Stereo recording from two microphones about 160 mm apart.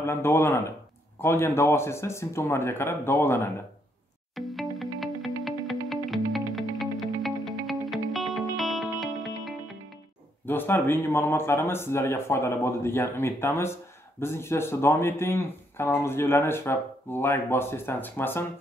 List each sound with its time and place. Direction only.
0.0 s speech: 15° left (ahead or behind)
4.4 s music: centre (ahead or behind)
10.4 s speech: 15° left (ahead or behind)